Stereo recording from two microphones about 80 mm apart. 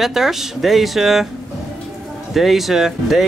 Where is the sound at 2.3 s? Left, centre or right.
Centre.